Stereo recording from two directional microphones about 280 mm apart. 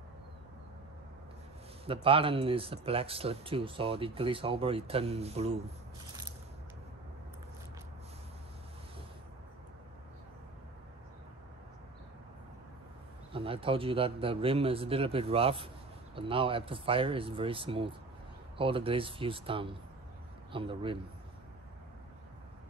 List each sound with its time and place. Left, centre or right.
1.9 s speech: centre
13.3 s speech: centre